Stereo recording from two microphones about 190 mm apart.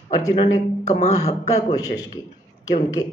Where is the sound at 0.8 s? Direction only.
35° left (ahead or behind).